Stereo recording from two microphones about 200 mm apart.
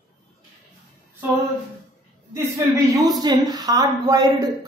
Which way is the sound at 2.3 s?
15° right (ahead or behind).